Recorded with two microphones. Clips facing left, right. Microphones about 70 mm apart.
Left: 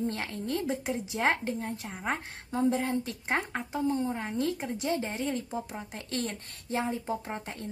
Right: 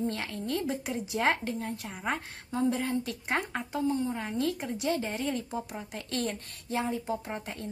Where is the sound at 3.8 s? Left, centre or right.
Left.